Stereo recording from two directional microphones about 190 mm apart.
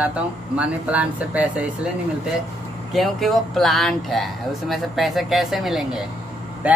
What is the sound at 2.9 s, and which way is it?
Speech, centre (ahead or behind).